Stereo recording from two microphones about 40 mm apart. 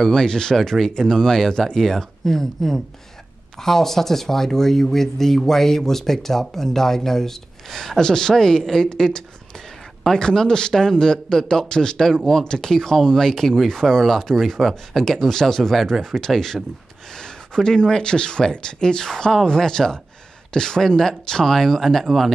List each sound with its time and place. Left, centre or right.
0.0 s speech: centre
17.1 s speech: centre